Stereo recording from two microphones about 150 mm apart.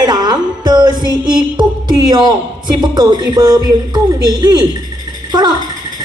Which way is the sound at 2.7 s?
30° right (ahead or behind).